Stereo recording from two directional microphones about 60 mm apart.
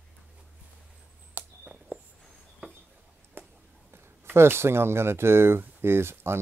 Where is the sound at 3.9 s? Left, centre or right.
Right.